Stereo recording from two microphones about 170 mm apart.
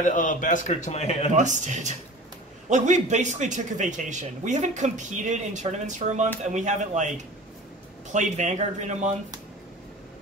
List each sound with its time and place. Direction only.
0.0 s a man's voice: 50° left (ahead or behind)
1.3 s a man's voice: 45° right (ahead or behind)
8.1 s a man's voice: 45° right (ahead or behind)